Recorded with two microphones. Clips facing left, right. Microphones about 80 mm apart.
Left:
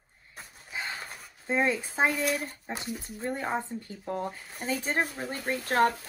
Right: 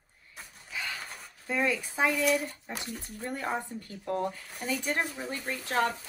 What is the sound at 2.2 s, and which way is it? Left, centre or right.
Speech, left.